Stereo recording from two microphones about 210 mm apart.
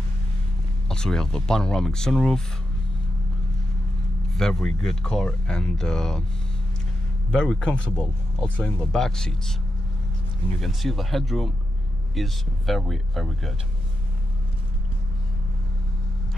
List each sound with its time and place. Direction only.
0.8 s speech: 5° left (ahead or behind)
4.3 s speech: centre (ahead or behind)
7.2 s speech: 5° left (ahead or behind)
10.6 s speech: centre (ahead or behind)